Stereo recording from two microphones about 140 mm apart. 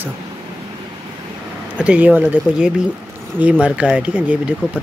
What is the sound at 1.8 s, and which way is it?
Speech, 10° right (ahead or behind).